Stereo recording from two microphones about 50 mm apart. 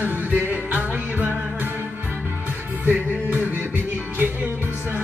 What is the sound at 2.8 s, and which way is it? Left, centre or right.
Music, right.